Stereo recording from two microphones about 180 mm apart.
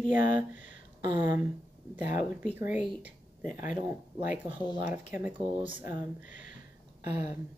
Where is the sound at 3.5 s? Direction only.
45° left (ahead or behind).